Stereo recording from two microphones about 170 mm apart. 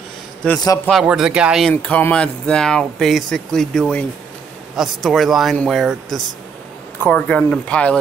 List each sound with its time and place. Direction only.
0.8 s speech: centre (ahead or behind)
1.7 s speech: 10° left (ahead or behind)